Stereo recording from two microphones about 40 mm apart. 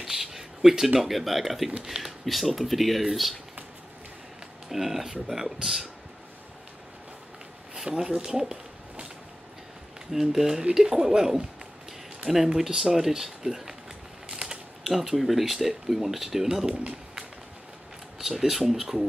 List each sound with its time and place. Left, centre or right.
0.0 s speech: centre
4.6 s speech: centre
7.7 s speech: centre
10.1 s speech: centre
14.3 s a sound: centre
14.9 s speech: centre
16.7 s speech: right
18.2 s speech: centre